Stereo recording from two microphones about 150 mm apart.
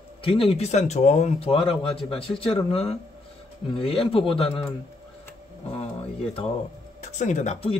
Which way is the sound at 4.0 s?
40° left (ahead or behind).